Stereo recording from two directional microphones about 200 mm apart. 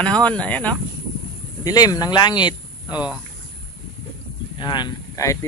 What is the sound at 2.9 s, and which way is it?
Speech, 5° right (ahead or behind).